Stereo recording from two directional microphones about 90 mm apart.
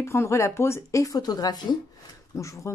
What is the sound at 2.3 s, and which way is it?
Speech, 35° left (ahead or behind).